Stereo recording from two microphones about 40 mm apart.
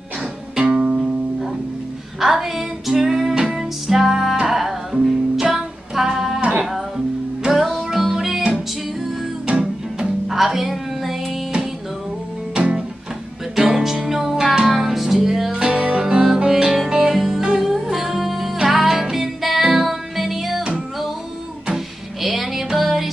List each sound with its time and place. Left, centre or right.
0.7 s music: right
2.1 s music: centre
7.4 s music: centre
9.5 s music: right
10.0 s music: centre
13.6 s music: centre
15.6 s music: right; by 20.6 s centre
21.6 s music: centre